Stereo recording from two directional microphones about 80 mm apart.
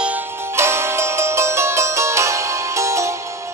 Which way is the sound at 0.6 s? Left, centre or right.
Right.